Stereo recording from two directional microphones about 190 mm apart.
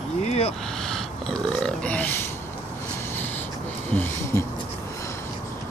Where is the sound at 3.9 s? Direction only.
10° left (ahead or behind).